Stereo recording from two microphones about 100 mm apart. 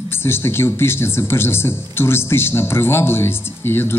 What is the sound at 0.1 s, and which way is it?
Speech, 25° left (ahead or behind).